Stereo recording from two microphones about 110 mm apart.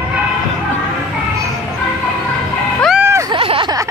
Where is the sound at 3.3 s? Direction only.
50° right (ahead or behind).